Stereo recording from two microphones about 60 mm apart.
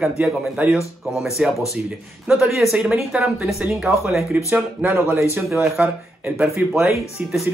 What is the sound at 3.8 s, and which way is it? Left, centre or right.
Speech, centre.